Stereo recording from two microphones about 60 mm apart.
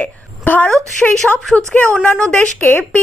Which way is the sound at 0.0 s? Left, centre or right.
Left.